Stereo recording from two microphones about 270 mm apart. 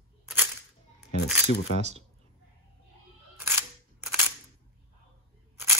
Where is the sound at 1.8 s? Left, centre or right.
Right.